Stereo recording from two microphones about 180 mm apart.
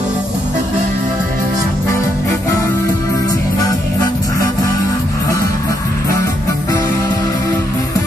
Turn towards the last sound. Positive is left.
turn(degrees=20)  # may be behind; listen again after turning